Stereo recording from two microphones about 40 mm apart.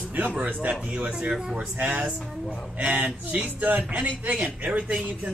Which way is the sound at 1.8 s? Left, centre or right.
Right.